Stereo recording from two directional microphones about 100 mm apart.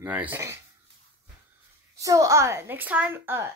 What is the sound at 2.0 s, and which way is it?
A child's voice, 35° right (ahead or behind).